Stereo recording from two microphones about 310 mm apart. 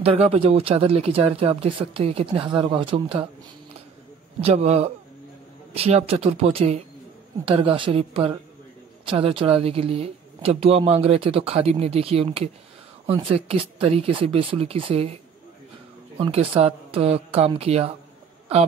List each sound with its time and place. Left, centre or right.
0.0 s speech: centre
4.4 s speech: centre
16.2 s speech: centre